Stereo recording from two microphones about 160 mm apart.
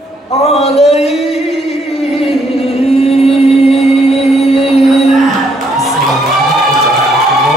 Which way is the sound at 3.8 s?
Centre (ahead or behind).